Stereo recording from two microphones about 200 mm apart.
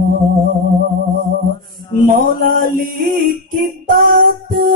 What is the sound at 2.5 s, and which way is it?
Female singing, 45° right (ahead or behind).